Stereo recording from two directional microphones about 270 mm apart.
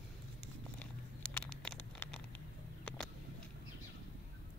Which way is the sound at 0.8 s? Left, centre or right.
Centre.